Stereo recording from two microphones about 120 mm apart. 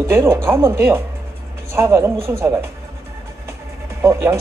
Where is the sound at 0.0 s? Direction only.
20° right (ahead or behind).